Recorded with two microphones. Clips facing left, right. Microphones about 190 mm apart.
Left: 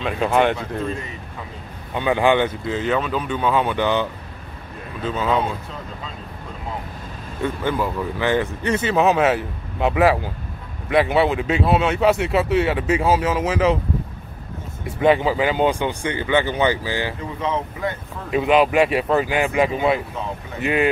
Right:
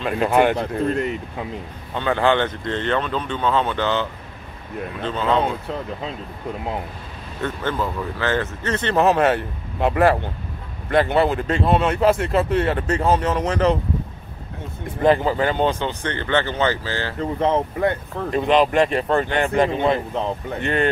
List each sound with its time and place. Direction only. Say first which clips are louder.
0.0 s speech: right 1 dB; centre (ahead or behind)
0.6 s speech: right 5 dB; 65° right (ahead or behind)
2.0 s speech: left 1 dB; 15° left (ahead or behind)
7.4 s speech: left 2 dB; 10° left (ahead or behind)
15.0 s speech: even; 5° left (ahead or behind)
17.2 s speech: right 5 dB; 55° right (ahead or behind)
18.3 s speech: left 1 dB; 5° left (ahead or behind)